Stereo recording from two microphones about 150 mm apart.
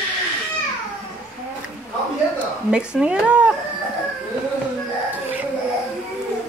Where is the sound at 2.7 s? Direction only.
5° right (ahead or behind).